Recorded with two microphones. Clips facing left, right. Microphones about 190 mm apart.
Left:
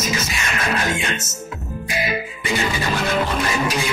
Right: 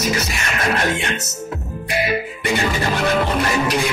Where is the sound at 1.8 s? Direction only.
65° right (ahead or behind).